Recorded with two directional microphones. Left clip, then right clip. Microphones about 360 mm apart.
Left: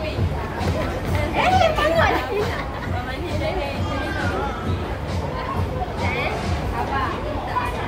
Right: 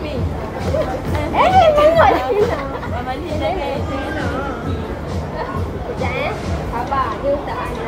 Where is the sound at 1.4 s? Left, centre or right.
Centre.